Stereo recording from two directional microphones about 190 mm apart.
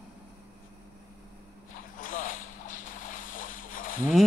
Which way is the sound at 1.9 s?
45° left (ahead or behind).